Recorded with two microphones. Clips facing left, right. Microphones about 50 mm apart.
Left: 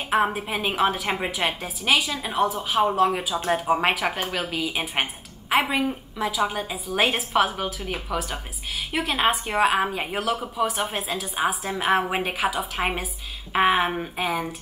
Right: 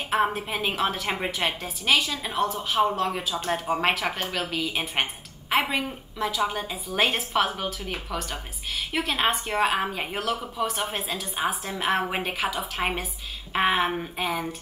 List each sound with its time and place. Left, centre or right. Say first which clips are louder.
0.1 s a woman's voice: left 2 dB; centre